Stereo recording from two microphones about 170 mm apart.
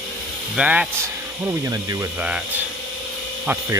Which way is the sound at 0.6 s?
5° right (ahead or behind).